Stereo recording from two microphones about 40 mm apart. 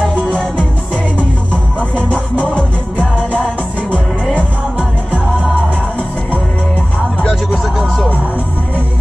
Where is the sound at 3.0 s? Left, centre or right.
Right.